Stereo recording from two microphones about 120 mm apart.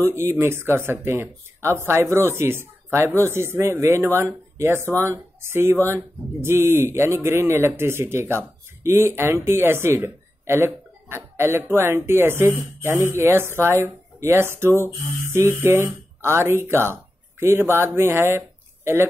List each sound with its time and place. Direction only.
0.0 s speech: 20° right (ahead or behind)